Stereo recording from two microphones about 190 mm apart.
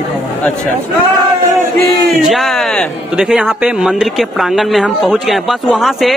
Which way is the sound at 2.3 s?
Centre (ahead or behind).